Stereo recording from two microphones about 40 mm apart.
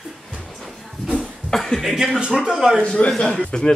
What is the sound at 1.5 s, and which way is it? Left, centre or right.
Speech, centre.